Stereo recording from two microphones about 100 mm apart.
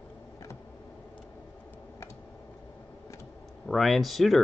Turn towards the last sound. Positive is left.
turn(degrees=0)  # may be behind; listen again after turning